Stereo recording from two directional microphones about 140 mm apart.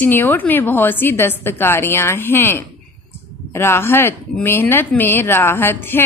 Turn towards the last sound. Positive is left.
turn(degrees=15)  # may be behind; listen again after turning